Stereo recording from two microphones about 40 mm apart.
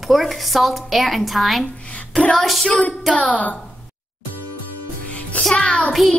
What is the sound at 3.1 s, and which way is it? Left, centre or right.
Speech, left.